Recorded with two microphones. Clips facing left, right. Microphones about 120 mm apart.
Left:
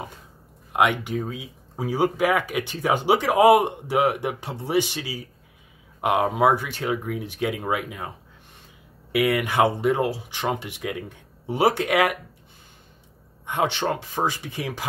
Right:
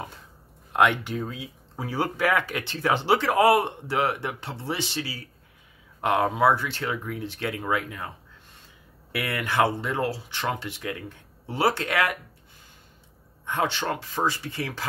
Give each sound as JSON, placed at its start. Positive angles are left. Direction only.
{"t": 0.7, "sound": "speech", "side_deg": 10}
{"t": 9.1, "sound": "speech", "side_deg": 15}
{"t": 13.5, "sound": "speech", "side_deg": 20}